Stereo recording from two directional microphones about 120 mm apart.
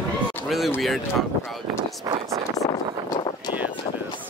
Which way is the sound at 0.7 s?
Centre (ahead or behind).